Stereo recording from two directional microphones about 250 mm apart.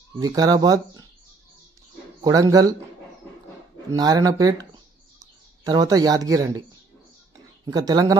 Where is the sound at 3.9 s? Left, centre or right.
Centre.